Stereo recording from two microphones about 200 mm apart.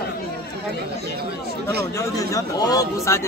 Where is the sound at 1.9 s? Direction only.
15° left (ahead or behind).